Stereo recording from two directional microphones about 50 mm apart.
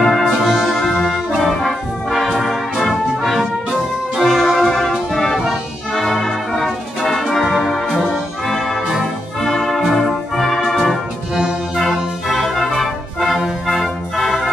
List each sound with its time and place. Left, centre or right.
0.0 s music: centre
0.7 s brass instrument: centre
4.2 s music: centre
5.9 s brass instrument: centre
6.5 s music: centre
8.5 s brass instrument: centre
11.7 s music: centre